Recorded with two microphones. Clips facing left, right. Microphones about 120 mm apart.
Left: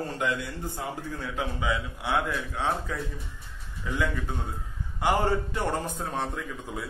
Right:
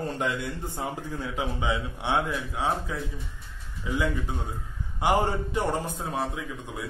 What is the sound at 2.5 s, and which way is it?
A man's voice, 10° right (ahead or behind).